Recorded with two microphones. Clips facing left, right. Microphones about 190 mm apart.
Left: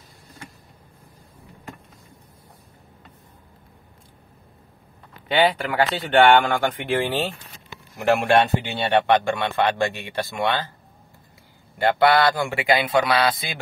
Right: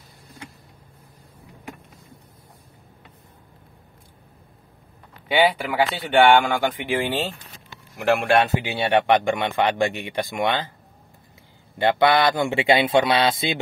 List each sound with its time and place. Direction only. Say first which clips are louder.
5.3 s a man's voice: even; 10° right (ahead or behind)
11.8 s speech: even; 20° right (ahead or behind)